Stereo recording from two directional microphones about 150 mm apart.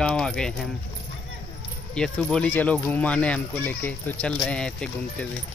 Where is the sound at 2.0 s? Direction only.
5° left (ahead or behind).